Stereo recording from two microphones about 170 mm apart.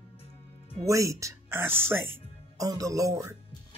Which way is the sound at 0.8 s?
20° right (ahead or behind).